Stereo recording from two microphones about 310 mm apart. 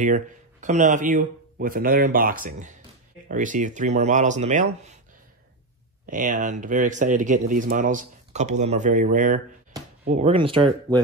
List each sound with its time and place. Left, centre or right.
0.0 s speech: right
6.0 s speech: right